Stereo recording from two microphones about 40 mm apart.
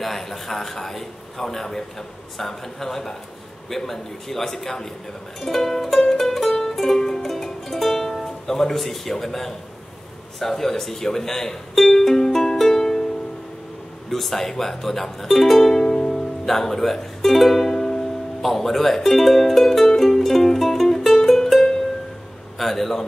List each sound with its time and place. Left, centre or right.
0.0 s a man's voice: centre
5.9 s music: centre
10.4 s speech: centre
14.1 s speech: centre
15.7 s music: centre
18.5 s speech: centre
20.0 s music: centre
22.6 s a man's voice: centre